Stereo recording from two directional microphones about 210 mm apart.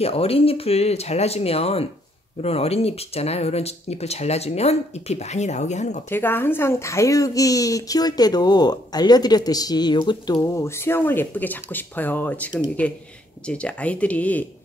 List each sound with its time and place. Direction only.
0.0 s speech: 30° left (ahead or behind)
6.0 s speech: 10° left (ahead or behind)